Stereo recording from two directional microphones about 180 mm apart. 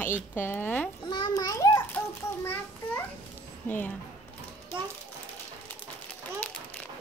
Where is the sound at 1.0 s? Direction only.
25° left (ahead or behind).